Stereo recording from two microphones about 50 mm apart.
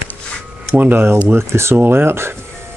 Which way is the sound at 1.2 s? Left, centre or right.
Right.